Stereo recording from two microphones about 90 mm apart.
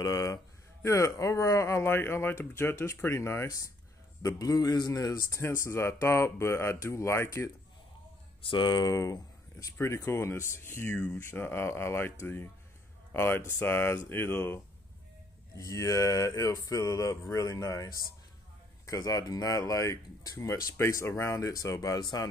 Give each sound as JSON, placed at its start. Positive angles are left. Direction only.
{"t": 0.0, "sound": "a sound", "side_deg": 45}
{"t": 0.8, "sound": "a man's voice", "side_deg": 35}
{"t": 5.4, "sound": "a man's voice", "side_deg": 30}
{"t": 8.4, "sound": "speech", "side_deg": 70}
{"t": 8.8, "sound": "speech", "side_deg": 40}
{"t": 15.5, "sound": "a man's voice", "side_deg": 35}
{"t": 18.9, "sound": "a man's voice", "side_deg": 40}